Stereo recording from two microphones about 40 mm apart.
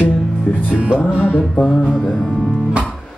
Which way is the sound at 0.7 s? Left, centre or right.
Right.